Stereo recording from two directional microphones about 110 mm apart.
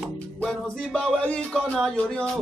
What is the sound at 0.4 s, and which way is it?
Speech, 5° left (ahead or behind).